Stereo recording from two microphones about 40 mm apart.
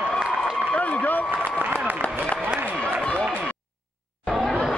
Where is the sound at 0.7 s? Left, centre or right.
Left.